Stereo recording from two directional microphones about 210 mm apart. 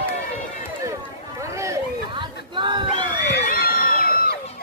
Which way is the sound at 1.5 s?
20° right (ahead or behind).